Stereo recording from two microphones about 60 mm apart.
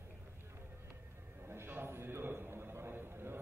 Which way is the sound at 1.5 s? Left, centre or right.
Right.